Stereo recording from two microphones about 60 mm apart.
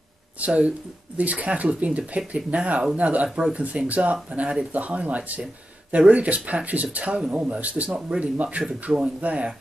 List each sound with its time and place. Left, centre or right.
0.5 s speech: right